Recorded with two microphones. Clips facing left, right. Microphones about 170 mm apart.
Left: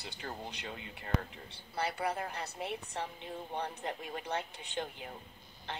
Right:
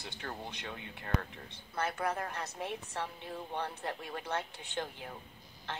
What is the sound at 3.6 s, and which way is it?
Speech, 15° left (ahead or behind).